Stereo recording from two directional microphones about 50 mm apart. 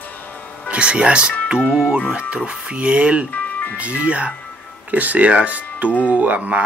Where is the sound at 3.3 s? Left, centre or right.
Left.